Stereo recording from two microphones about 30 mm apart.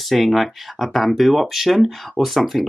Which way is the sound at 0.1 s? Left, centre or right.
Centre.